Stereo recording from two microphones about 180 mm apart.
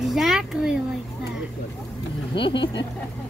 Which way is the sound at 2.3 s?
25° left (ahead or behind).